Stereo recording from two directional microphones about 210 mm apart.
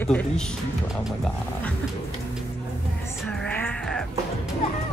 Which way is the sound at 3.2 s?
5° left (ahead or behind).